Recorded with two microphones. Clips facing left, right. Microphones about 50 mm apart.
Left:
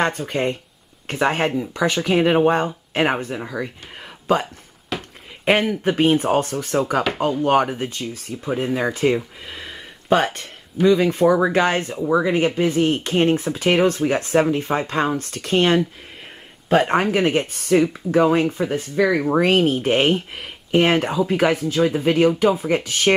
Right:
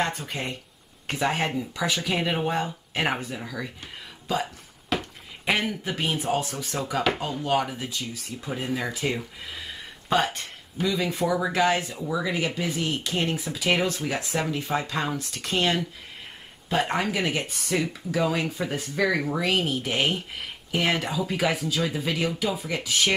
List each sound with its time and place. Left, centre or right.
0.0 s speech: left
3.3 s speech: left
4.9 s a sound: centre
5.4 s speech: left
8.5 s speech: left
16.9 s speech: left
18.6 s speech: left
19.2 s speech: left